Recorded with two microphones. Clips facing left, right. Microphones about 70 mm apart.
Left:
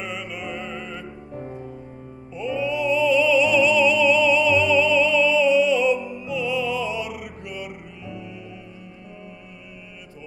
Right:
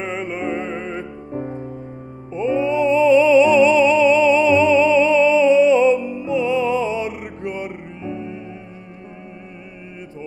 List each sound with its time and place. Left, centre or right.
0.0 s music: right